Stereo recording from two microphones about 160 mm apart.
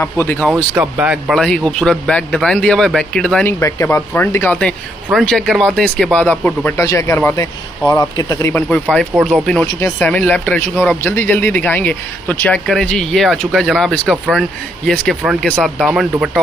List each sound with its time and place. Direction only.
0.0 s speech: 10° left (ahead or behind)
0.7 s speech: 10° right (ahead or behind); by 8.6 s 15° left (ahead or behind)
9.1 s speech: centre (ahead or behind)